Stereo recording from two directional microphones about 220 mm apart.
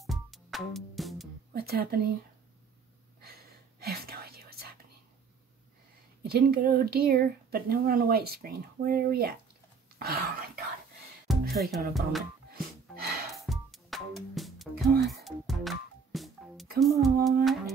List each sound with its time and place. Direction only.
0.0 s music: centre (ahead or behind)
1.5 s speech: 45° right (ahead or behind)
3.8 s whispering: 45° right (ahead or behind)
6.2 s speech: 45° right (ahead or behind)
9.9 s cough: 40° right (ahead or behind)
11.3 s music: centre (ahead or behind)
12.4 s music: 45° right (ahead or behind)
13.5 s music: centre (ahead or behind)